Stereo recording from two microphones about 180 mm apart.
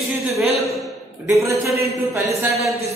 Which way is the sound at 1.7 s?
15° right (ahead or behind).